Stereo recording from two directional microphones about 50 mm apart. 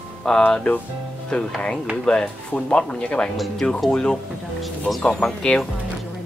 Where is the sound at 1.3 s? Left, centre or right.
Centre.